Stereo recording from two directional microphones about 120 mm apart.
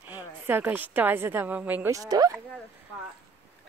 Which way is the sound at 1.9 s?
30° right (ahead or behind).